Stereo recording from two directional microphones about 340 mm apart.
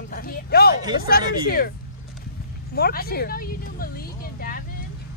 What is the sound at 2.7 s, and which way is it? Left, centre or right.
A woman's voice, left.